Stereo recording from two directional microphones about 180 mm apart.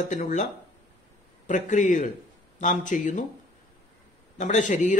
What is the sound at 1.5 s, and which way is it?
Speech, 45° left (ahead or behind).